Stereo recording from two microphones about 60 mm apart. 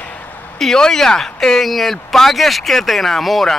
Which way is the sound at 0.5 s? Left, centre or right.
Centre.